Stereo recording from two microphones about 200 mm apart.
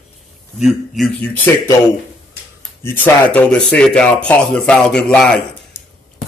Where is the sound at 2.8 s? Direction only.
10° left (ahead or behind).